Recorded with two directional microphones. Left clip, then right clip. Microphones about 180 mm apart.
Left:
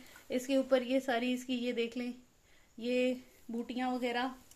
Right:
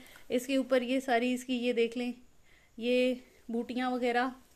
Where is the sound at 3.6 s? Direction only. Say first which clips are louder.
Right 3 dB; 65° right (ahead or behind).